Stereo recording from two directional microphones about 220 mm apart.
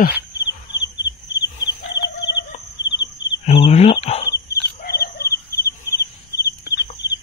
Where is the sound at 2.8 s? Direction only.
50° left (ahead or behind).